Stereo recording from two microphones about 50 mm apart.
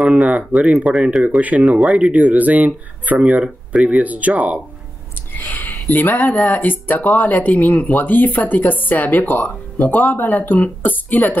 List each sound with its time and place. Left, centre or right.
0.0 s speech: right
5.4 s speech: left